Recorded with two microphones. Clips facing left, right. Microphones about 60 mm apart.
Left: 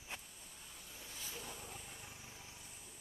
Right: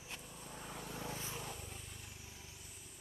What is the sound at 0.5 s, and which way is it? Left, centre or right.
Vehicle, right.